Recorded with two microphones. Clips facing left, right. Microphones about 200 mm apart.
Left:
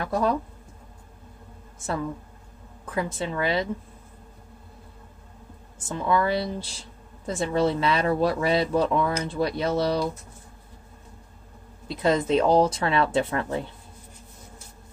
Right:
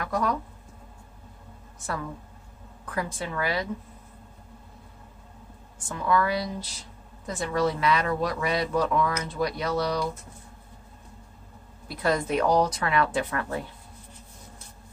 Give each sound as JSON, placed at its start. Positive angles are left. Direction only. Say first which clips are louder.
{"t": 0.0, "sound": "speech", "louder": "left 3 dB", "side_deg": 30}
{"t": 2.8, "sound": "speech", "louder": "left 3 dB", "side_deg": 25}
{"t": 5.8, "sound": "speech", "louder": "left 1 dB", "side_deg": 25}
{"t": 11.9, "sound": "speech", "louder": "left 4 dB", "side_deg": 20}